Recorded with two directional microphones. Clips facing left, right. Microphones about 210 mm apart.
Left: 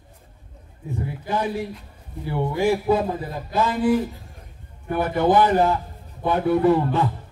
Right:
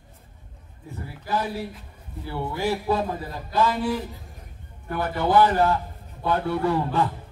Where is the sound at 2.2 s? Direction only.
15° left (ahead or behind).